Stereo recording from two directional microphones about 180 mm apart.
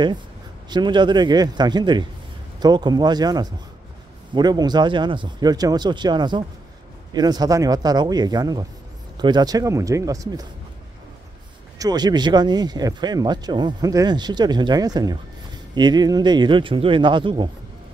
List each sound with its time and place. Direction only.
0.7 s speech: 25° right (ahead or behind)
11.8 s speech: 20° right (ahead or behind)